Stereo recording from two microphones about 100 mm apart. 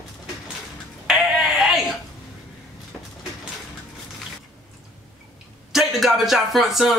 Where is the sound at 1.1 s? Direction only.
5° right (ahead or behind).